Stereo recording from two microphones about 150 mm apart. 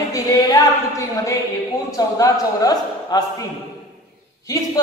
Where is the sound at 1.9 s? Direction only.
20° left (ahead or behind).